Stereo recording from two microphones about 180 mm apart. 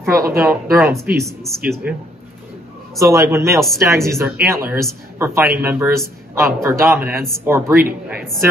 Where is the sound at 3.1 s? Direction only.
15° right (ahead or behind).